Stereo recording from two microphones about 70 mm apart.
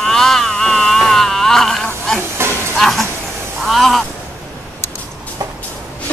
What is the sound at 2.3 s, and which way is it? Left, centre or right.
Music, right.